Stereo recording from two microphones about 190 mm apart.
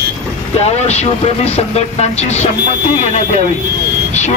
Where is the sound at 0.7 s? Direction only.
35° left (ahead or behind).